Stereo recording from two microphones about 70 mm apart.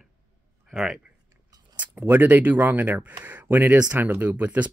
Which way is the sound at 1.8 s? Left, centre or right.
Right.